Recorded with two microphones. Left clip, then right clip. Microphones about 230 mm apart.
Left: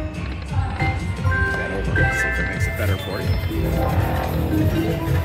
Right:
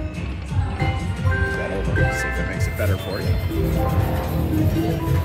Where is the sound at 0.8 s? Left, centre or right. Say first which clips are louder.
Left 1 dB; centre.